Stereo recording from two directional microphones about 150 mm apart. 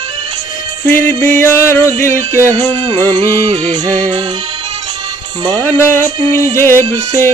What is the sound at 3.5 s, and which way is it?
Music, 50° right (ahead or behind).